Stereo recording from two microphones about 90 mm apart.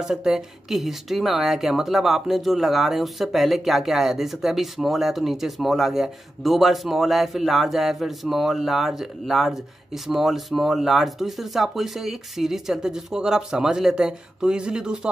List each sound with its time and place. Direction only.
0.0 s speech: 5° right (ahead or behind)